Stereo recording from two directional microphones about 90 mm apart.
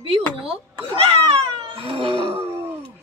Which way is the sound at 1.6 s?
85° right.